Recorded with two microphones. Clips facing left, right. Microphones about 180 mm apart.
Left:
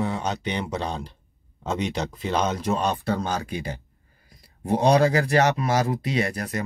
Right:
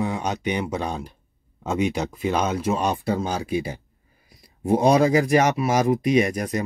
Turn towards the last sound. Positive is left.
turn(degrees=-15)  # may be behind; listen again after turning